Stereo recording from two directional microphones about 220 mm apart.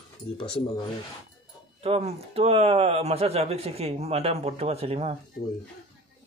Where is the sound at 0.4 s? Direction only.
25° left (ahead or behind).